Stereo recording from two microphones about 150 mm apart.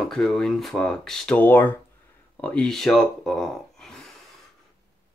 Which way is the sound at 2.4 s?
5° left (ahead or behind).